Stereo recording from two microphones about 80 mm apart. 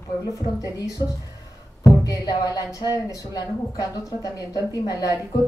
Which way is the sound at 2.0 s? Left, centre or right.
Left.